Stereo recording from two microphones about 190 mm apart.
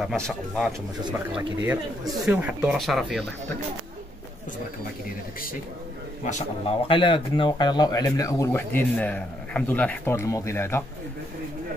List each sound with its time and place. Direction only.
0.0 s speech: centre (ahead or behind)
6.2 s speech: 35° left (ahead or behind); by 10.8 s 15° left (ahead or behind)